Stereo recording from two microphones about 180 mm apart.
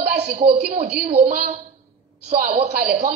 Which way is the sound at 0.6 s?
60° right (ahead or behind).